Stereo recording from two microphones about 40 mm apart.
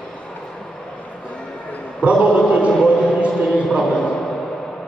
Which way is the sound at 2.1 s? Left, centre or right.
Right.